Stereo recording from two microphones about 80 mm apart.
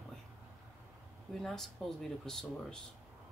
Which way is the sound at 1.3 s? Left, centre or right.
Centre.